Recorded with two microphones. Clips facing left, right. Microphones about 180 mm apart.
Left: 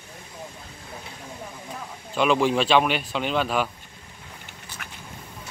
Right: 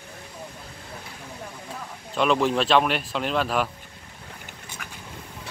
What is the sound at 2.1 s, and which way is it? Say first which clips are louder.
Speech: left 1 dB; centre (ahead or behind).